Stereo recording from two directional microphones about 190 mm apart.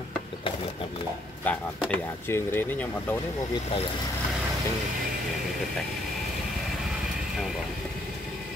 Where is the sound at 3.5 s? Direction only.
30° left (ahead or behind).